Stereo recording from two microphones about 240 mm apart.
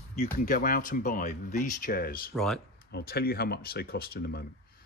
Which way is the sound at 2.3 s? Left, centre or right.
Centre.